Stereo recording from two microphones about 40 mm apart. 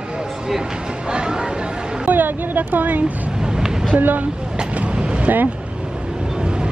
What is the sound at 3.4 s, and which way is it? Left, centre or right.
Vehicle, centre.